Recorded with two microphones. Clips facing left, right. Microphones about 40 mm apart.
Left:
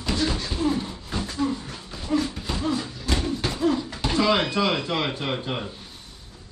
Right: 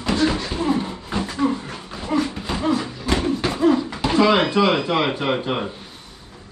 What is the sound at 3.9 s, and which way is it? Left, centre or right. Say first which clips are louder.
Speech: right 5 dB; right.